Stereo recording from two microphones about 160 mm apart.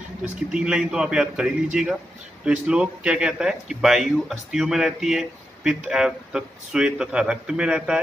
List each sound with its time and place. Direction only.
0.5 s speech: 5° right (ahead or behind)